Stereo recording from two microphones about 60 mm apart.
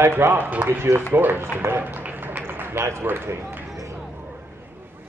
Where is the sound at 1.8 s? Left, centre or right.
Right.